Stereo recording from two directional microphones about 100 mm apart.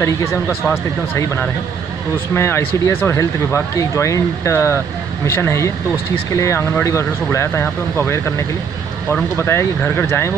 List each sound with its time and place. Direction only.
0.0 s speech: 25° left (ahead or behind)
2.3 s speech: 25° left (ahead or behind)
9.4 s speech: 25° left (ahead or behind)